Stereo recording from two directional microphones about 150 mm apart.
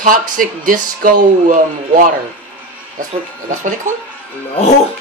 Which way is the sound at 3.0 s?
60° right (ahead or behind).